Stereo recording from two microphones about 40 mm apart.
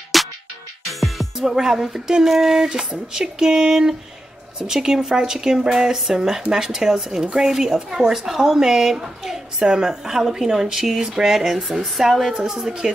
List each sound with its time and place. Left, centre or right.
0.1 s music: centre
1.5 s a woman's voice: centre